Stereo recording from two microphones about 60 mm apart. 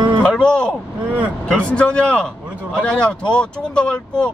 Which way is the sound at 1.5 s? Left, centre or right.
Centre.